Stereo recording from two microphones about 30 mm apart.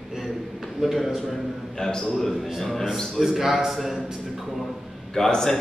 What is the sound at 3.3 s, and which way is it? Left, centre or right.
Speech, centre.